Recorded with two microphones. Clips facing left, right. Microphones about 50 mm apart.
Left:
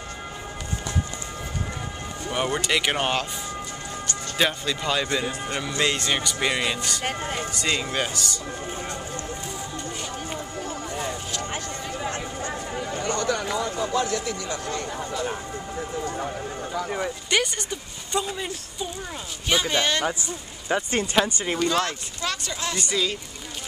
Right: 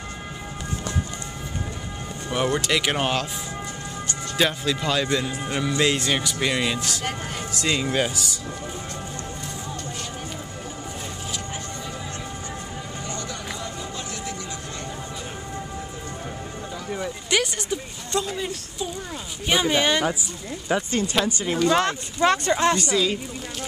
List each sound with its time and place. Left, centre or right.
2.3 s speech: centre
4.4 s speech: centre
7.1 s speech: left
7.5 s speech: centre
11.5 s a sound: left
13.9 s speech: left
17.3 s speech: centre
19.5 s speech: centre
20.1 s speech: centre
21.7 s speech: right
22.8 s speech: centre